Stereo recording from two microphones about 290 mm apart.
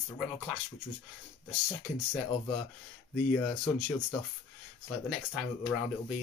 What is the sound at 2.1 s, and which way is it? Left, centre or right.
Speech, centre.